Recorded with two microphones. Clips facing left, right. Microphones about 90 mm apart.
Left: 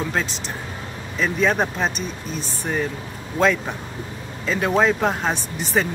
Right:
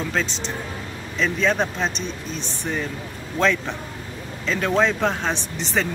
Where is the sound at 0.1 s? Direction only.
10° left (ahead or behind).